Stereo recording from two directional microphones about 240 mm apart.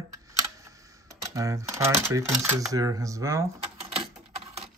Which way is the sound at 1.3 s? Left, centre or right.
Centre.